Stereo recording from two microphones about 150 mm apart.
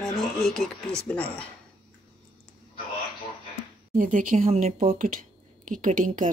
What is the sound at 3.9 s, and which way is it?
A woman's voice, 60° right (ahead or behind).